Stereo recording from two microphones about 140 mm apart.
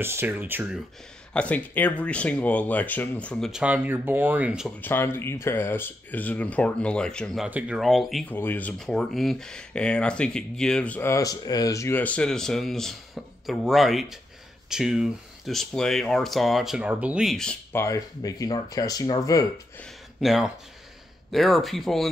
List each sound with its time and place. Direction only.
0.0 s speech: 15° right (ahead or behind)
1.3 s speech: 10° left (ahead or behind)
3.6 s speech: 10° right (ahead or behind)
4.8 s speech: 15° left (ahead or behind)
7.4 s speech: 10° right (ahead or behind)
8.3 s speech: 15° left (ahead or behind)
17.7 s speech: 20° left (ahead or behind)
20.2 s speech: centre (ahead or behind)